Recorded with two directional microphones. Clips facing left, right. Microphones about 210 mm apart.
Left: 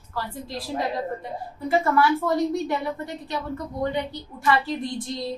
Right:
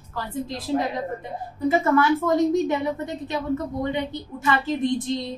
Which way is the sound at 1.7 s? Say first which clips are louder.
Right 2 dB; 20° right (ahead or behind).